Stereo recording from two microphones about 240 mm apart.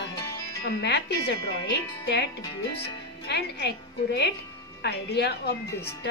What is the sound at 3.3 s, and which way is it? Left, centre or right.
A woman's voice, left.